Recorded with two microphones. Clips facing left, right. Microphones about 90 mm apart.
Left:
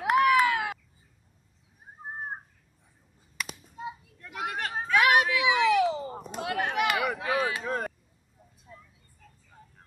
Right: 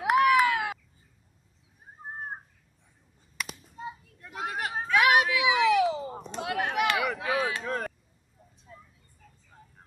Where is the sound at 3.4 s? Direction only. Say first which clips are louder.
Left 1 dB; centre (ahead or behind).